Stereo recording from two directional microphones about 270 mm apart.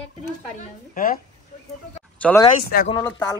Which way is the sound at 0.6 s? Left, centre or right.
Left.